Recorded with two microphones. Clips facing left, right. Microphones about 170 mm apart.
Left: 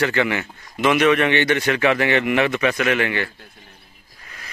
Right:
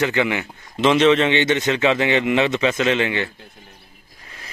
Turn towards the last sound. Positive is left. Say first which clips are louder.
# right 1 dB
turn(degrees=-20)  # may be behind; listen again after turning